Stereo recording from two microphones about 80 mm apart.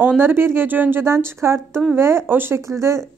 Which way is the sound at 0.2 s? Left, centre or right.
Right.